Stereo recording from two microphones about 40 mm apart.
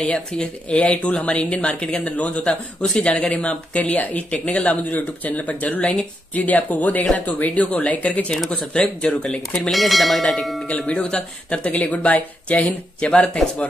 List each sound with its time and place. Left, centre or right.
0.1 s speech: left
2.4 s a man's voice: left
3.1 s speech: left
8.5 s a man's voice: left
9.6 s speech: centre
10.9 s speech: left